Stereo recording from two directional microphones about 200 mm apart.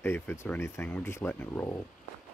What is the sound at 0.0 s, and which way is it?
Speech, 10° left (ahead or behind).